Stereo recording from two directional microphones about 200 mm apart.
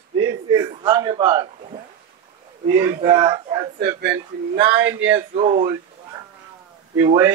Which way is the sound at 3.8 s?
55° right (ahead or behind).